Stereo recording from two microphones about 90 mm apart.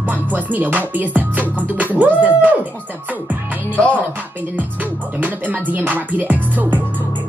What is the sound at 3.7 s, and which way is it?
Speech, 15° left (ahead or behind).